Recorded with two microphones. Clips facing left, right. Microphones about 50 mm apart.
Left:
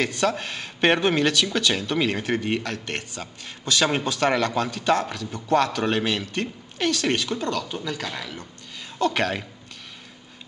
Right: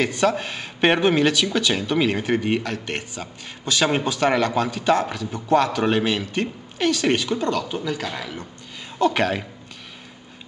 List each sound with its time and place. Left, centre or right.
0.0 s a woman's voice: centre